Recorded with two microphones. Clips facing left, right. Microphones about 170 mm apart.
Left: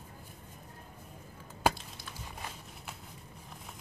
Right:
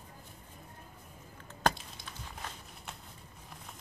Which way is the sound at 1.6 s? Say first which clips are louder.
Left 1 dB; 10° left (ahead or behind).